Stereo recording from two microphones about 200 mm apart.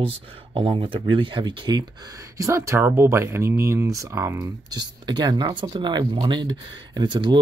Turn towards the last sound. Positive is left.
turn(degrees=-25)  # may be behind; listen again after turning